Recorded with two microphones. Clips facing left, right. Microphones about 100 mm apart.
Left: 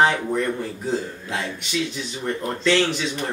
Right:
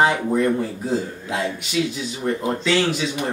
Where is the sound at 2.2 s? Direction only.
15° right (ahead or behind).